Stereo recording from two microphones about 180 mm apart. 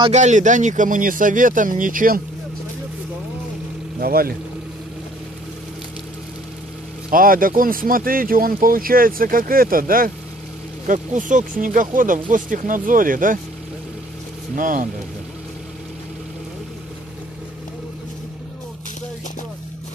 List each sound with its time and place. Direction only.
0.1 s speech: 40° right (ahead or behind)
4.0 s speech: 55° right (ahead or behind)
7.1 s speech: 50° right (ahead or behind)
14.5 s speech: 50° right (ahead or behind)